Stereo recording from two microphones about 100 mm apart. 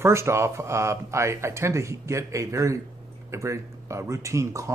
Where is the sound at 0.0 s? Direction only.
25° right (ahead or behind).